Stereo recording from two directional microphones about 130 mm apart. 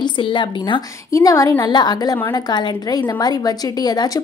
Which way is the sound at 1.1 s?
25° left (ahead or behind).